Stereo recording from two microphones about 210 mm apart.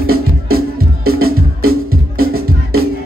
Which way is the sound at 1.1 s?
45° right (ahead or behind).